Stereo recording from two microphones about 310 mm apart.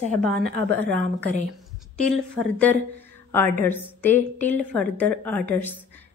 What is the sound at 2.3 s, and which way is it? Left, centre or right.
A woman's voice, centre.